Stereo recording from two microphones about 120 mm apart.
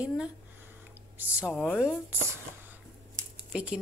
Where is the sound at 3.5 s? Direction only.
10° right (ahead or behind).